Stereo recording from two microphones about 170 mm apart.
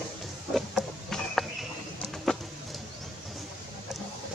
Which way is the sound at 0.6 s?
Centre (ahead or behind).